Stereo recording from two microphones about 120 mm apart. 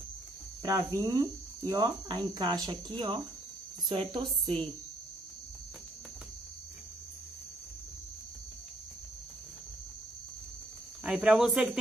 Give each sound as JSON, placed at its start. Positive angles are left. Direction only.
{"t": 0.6, "sound": "a woman's voice", "side_deg": -30}
{"t": 11.1, "sound": "speech", "side_deg": -5}